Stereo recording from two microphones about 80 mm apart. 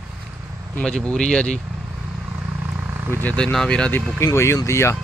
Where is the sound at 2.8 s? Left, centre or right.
Right.